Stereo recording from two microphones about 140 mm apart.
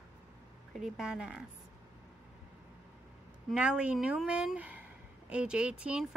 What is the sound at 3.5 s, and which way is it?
A woman's voice, 10° right (ahead or behind).